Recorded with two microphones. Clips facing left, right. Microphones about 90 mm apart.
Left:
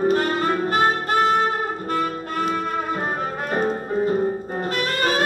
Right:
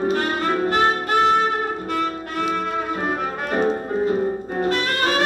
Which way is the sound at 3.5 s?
5° left (ahead or behind).